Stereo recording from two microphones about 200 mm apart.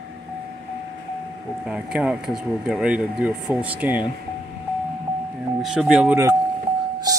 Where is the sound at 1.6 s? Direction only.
5° right (ahead or behind).